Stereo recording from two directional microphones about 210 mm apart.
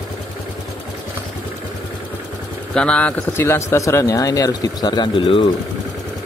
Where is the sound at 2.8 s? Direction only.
5° left (ahead or behind); by 5.4 s 25° left (ahead or behind).